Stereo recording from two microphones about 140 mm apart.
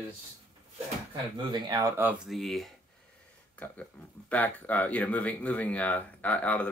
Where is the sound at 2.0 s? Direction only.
5° right (ahead or behind).